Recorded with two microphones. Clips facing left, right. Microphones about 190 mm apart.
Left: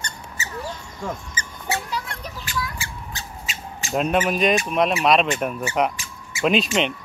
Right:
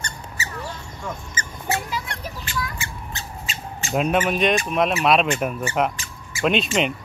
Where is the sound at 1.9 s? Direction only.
5° right (ahead or behind).